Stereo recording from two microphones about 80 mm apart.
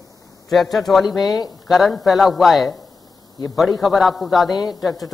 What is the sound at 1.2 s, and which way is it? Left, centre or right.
Speech, left.